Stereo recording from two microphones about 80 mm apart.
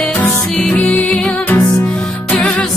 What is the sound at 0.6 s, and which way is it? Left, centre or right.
Music, centre.